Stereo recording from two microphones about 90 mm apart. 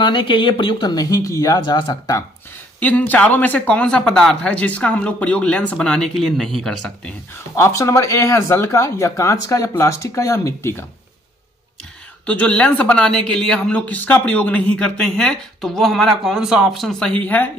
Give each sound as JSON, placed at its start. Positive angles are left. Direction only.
{"t": 0.0, "sound": "speech", "side_deg": 65}
{"t": 1.6, "sound": "speech", "side_deg": 60}
{"t": 2.8, "sound": "speech", "side_deg": 15}
{"t": 7.5, "sound": "speech", "side_deg": 35}
{"t": 12.3, "sound": "speech", "side_deg": 15}
{"t": 17.0, "sound": "speech", "side_deg": 15}